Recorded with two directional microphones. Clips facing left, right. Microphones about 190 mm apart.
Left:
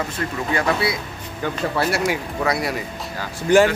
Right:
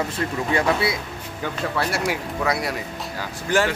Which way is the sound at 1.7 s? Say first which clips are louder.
Left 3 dB; centre (ahead or behind).